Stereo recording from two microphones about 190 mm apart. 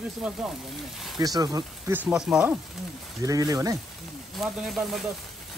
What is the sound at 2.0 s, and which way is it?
Speech, 5° right (ahead or behind).